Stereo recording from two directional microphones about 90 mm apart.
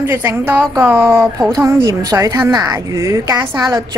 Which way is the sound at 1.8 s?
40° right (ahead or behind).